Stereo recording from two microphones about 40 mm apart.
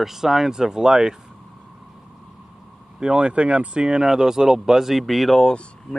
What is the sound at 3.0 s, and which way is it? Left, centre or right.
Speech, right.